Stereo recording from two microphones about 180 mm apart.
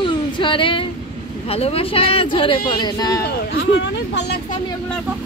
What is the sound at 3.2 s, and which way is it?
Speech, 80° left.